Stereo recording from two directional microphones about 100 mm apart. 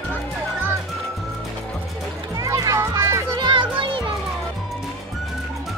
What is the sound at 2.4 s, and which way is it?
Music, 35° right (ahead or behind).